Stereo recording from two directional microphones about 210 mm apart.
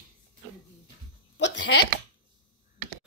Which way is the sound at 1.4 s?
60° left (ahead or behind).